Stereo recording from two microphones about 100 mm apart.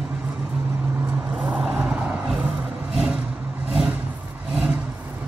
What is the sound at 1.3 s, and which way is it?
Vehicle, 10° right (ahead or behind).